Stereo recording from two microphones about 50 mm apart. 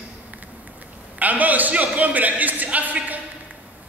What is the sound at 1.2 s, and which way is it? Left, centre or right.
A man's voice, right.